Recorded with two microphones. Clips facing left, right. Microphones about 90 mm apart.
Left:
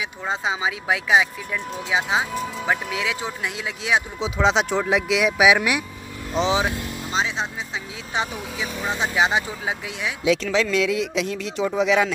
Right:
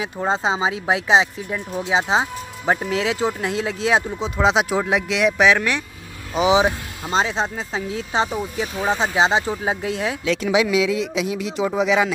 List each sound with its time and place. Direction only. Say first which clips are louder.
0.0 s speech: right 5 dB; 35° right (ahead or behind)
4.2 s speech: right 2 dB; 5° right (ahead or behind)
6.3 s speech: right 5 dB; 15° right (ahead or behind)
7.1 s speech: right 5 dB; 40° right (ahead or behind)
10.4 s speech: right 3 dB; 10° right (ahead or behind)